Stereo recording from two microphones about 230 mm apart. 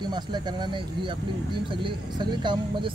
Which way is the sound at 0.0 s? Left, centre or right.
Centre.